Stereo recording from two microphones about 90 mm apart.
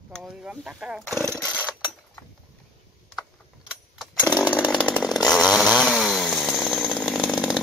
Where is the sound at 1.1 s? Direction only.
35° right (ahead or behind).